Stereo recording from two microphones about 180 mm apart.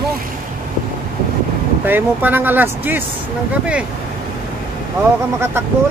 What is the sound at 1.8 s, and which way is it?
Speech, 10° right (ahead or behind).